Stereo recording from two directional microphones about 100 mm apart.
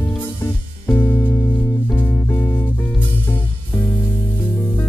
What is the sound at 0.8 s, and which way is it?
Music, 25° left (ahead or behind).